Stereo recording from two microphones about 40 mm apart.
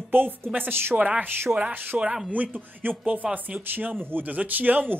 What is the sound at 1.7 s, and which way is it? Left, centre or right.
Speech, right.